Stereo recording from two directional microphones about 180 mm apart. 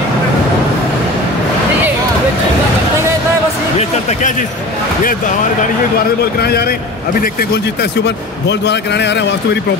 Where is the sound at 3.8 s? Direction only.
40° left (ahead or behind).